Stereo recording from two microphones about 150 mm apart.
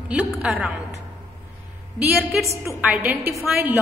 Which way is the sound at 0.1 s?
10° right (ahead or behind).